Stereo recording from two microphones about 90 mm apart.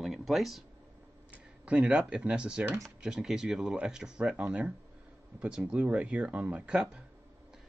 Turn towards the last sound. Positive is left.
turn(degrees=-10)  # may be behind; listen again after turning